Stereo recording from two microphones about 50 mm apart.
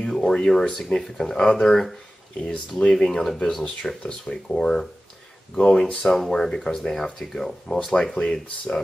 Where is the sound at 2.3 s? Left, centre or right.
Left.